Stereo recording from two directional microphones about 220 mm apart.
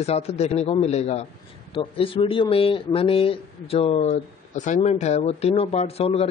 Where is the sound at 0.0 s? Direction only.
30° left (ahead or behind).